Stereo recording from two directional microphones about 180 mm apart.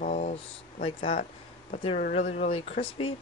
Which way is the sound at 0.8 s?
30° left (ahead or behind).